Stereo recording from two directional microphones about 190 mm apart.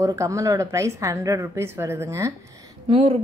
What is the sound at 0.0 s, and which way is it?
A woman's voice, 15° right (ahead or behind).